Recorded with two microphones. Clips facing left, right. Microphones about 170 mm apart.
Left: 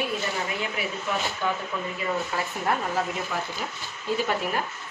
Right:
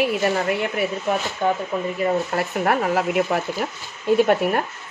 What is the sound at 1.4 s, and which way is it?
Speech, 50° right (ahead or behind).